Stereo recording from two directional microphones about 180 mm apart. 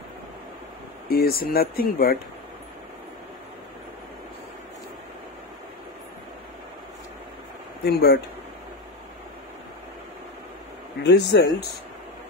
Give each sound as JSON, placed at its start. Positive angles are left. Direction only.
{"t": 1.0, "sound": "speech", "side_deg": 55}
{"t": 7.8, "sound": "speech", "side_deg": 60}
{"t": 11.1, "sound": "speech", "side_deg": 70}